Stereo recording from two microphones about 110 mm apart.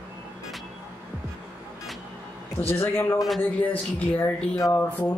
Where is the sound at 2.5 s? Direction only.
20° left (ahead or behind).